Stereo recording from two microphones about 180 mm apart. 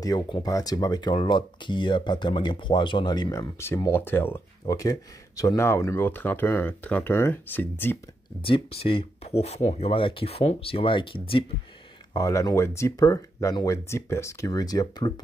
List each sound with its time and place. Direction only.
0.0 s speech: 20° left (ahead or behind)
8.4 s speech: 30° left (ahead or behind)
12.1 s speech: 20° left (ahead or behind)